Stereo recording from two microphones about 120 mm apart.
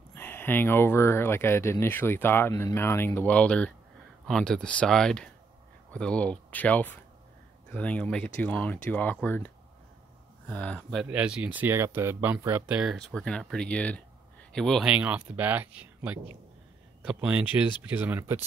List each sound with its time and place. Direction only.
0.1 s speech: 15° left (ahead or behind)
11.1 s speech: 10° right (ahead or behind)
13.1 s speech: 5° left (ahead or behind)
14.9 s speech: 10° right (ahead or behind)